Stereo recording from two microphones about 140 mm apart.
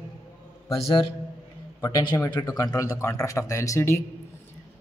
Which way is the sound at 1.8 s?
30° left (ahead or behind).